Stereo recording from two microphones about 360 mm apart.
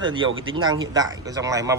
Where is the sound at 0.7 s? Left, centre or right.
Centre.